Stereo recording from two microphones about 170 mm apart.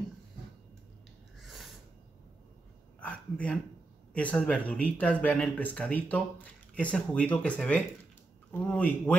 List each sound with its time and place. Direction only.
1.4 s snort: centre (ahead or behind)
3.0 s a sound: 5° left (ahead or behind)
4.1 s speech: 10° left (ahead or behind)